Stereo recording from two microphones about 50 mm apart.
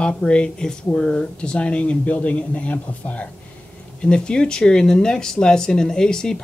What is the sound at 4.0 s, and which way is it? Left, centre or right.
Speech, centre.